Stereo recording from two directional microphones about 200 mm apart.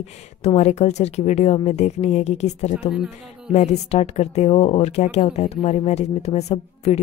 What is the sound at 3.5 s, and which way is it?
Speech, 35° left (ahead or behind).